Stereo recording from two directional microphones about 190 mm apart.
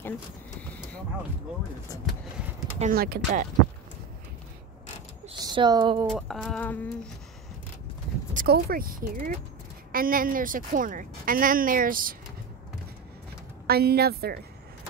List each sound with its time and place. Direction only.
2.8 s speech: 50° right (ahead or behind)
5.4 s speech: 20° right (ahead or behind)
6.0 s a sound: centre (ahead or behind)
8.3 s speech: 50° right (ahead or behind)
13.7 s speech: 55° right (ahead or behind)